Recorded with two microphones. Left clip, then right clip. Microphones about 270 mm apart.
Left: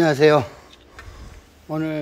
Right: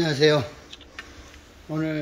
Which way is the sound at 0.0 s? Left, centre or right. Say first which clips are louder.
Left 5 dB; centre.